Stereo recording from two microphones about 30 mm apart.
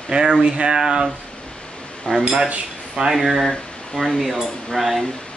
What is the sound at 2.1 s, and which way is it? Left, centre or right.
Speech, left.